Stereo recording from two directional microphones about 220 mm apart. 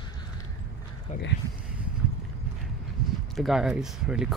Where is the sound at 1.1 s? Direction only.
30° left (ahead or behind).